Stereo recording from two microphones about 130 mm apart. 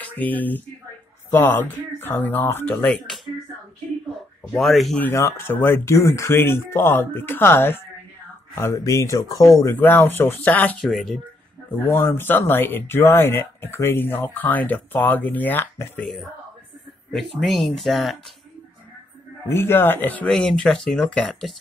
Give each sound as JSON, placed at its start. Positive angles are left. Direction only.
{"t": 0.0, "sound": "speech", "side_deg": 15}
{"t": 4.5, "sound": "speech", "side_deg": 0}
{"t": 5.0, "sound": "speech", "side_deg": 20}
{"t": 9.6, "sound": "speech", "side_deg": 15}
{"t": 10.9, "sound": "speech", "side_deg": 0}
{"t": 11.7, "sound": "speech", "side_deg": 15}
{"t": 17.1, "sound": "speech", "side_deg": 0}
{"t": 19.4, "sound": "speech", "side_deg": 20}